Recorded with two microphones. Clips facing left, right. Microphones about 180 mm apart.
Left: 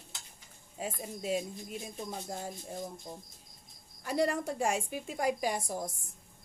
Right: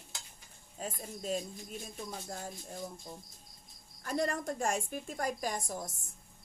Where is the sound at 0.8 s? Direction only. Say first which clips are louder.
Left 3 dB; 10° left (ahead or behind).